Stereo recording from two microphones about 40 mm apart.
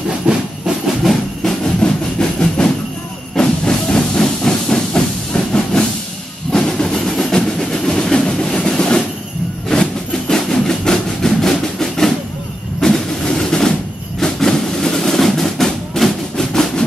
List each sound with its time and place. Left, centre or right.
0.3 s train: right
1.6 s train: left
3.3 s steam: centre
5.3 s hiss: left
6.5 s train: centre
12.8 s a sound: centre
14.2 s music: centre